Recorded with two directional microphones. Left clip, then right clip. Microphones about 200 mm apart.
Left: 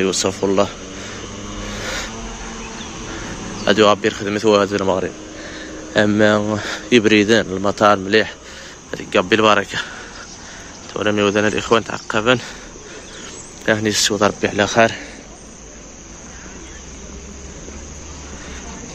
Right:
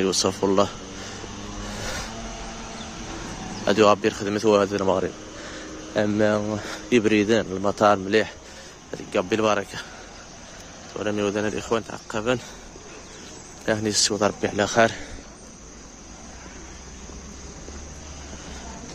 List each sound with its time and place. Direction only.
0.0 s speech: 20° right (ahead or behind)
1.8 s vehicle: 15° right (ahead or behind)
3.6 s speech: 20° right (ahead or behind)
5.9 s speech: centre (ahead or behind)
10.9 s speech: 5° left (ahead or behind)
13.7 s speech: 10° right (ahead or behind)